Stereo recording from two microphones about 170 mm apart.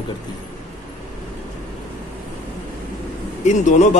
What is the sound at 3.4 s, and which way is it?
Speech, 45° left (ahead or behind).